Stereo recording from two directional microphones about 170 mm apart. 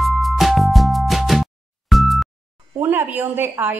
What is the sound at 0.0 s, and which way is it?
Music, centre (ahead or behind).